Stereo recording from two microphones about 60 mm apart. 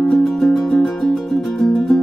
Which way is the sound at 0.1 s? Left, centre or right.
Centre.